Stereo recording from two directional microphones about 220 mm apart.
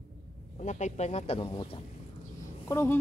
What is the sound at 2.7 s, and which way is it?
Mantra, 10° left (ahead or behind).